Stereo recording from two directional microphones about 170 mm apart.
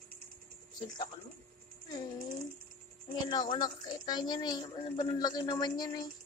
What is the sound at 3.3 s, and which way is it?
A woman's voice, 25° left (ahead or behind).